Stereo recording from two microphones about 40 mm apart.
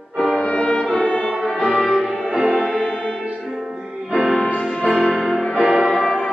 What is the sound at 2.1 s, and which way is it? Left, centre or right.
Music, centre.